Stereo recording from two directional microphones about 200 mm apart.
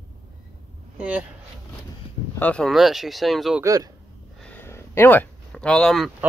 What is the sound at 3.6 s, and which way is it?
Speech, 15° right (ahead or behind).